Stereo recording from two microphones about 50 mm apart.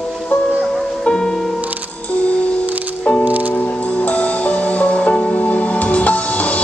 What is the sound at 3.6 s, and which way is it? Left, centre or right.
Music, left.